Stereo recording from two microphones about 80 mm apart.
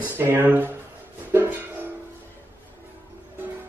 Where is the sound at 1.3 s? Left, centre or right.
Right.